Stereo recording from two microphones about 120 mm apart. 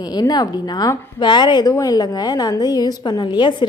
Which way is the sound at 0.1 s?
35° left (ahead or behind).